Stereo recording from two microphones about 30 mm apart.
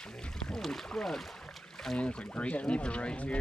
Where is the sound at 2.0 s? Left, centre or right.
Left.